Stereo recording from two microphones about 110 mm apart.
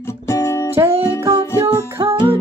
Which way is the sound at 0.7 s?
20° right (ahead or behind).